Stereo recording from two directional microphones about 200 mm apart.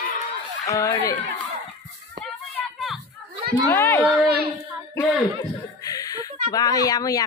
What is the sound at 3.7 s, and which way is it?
Speech, 10° left (ahead or behind).